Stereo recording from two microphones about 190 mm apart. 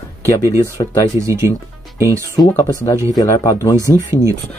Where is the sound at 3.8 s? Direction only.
15° right (ahead or behind).